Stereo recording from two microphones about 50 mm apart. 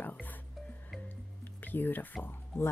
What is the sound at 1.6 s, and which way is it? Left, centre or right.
Speech, left.